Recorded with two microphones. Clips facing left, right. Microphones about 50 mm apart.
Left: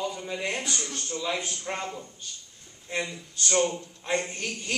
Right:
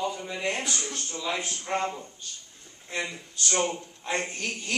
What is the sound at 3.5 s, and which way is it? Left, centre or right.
Speech, right.